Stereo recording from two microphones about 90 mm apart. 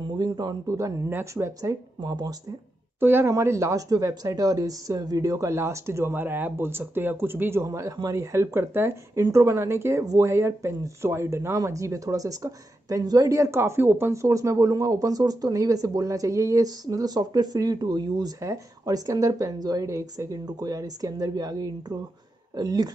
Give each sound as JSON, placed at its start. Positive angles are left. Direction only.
{"t": 0.2, "sound": "speech", "side_deg": -50}
{"t": 0.7, "sound": "speech", "side_deg": -35}
{"t": 3.0, "sound": "speech", "side_deg": -25}
{"t": 7.6, "sound": "speech", "side_deg": -35}
{"t": 13.6, "sound": "speech", "side_deg": -25}